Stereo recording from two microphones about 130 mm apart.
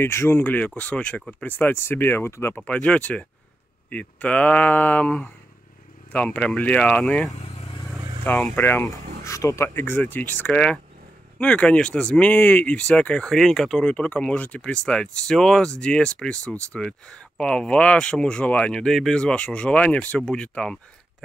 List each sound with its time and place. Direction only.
0.0 s speech: 20° left (ahead or behind)
7.3 s vehicle: 60° left (ahead or behind)
8.2 s speech: 15° left (ahead or behind)